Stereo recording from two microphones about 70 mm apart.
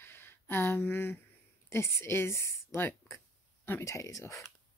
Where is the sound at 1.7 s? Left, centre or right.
Left.